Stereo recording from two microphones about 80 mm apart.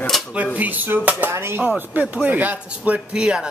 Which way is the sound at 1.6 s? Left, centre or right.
Centre.